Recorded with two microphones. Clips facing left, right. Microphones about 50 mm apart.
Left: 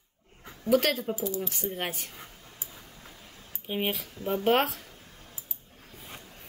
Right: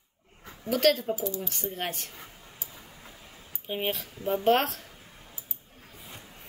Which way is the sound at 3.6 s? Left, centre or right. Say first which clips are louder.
Even; centre.